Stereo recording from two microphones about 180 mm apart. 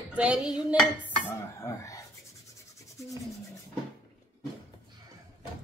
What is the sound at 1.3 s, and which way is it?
Dishes, 15° left (ahead or behind).